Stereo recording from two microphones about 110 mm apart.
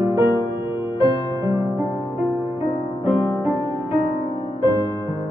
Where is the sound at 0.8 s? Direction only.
45° left (ahead or behind).